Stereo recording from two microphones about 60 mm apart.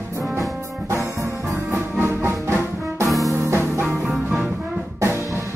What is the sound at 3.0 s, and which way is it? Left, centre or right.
Music, centre.